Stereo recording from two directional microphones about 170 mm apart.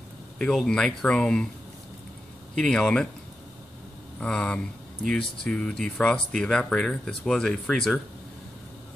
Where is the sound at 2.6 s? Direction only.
5° left (ahead or behind).